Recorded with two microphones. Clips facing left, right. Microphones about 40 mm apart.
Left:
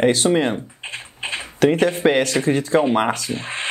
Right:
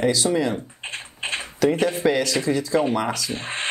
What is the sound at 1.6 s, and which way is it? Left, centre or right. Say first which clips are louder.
A man's voice: left 4 dB; left.